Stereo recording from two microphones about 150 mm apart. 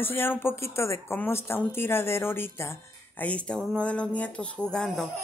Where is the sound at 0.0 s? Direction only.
15° left (ahead or behind).